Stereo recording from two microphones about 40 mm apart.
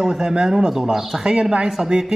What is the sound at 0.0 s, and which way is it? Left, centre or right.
A man's voice, centre.